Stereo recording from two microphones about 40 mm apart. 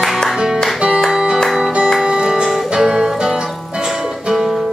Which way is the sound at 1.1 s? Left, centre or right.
Centre.